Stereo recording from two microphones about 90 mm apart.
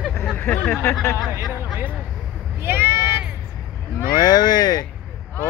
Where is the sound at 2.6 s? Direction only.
25° right (ahead or behind).